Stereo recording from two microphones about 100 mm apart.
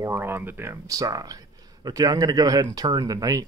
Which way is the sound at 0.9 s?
35° right (ahead or behind).